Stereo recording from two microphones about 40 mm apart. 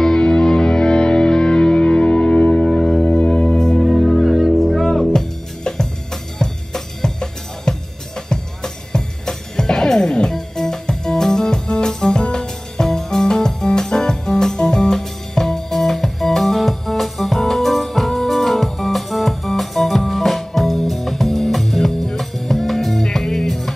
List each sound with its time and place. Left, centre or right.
0.0 s music: centre
3.3 s music: left
3.5 s music: centre
3.8 s music: centre
5.1 s music: centre
6.4 s drum: centre
8.3 s music: centre